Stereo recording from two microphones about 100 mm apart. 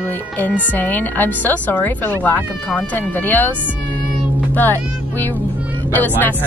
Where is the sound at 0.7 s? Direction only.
20° left (ahead or behind).